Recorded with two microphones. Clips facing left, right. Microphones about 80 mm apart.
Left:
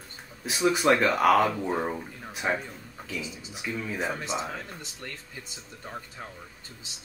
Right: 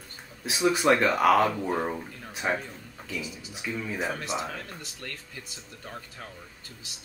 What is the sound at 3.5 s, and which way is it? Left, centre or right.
Speech, centre.